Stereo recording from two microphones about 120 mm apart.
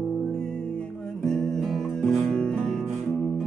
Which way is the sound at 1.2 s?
5° left (ahead or behind).